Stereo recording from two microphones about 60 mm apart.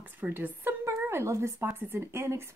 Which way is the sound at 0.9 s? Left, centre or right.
Right.